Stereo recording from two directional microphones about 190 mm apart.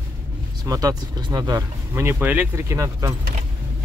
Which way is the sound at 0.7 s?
20° right (ahead or behind).